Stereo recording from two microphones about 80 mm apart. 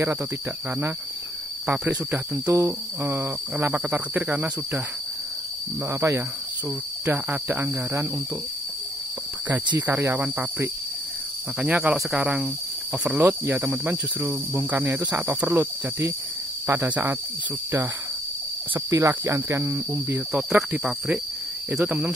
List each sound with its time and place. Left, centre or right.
1.9 s speech: right
5.9 s speech: right
7.1 s speech: right
9.8 s speech: right
11.7 s cricket: centre
13.2 s speech: centre
14.9 s cricket: centre
15.1 s speech: right
18.9 s speech: right; by 21.2 s centre
21.6 s speech: centre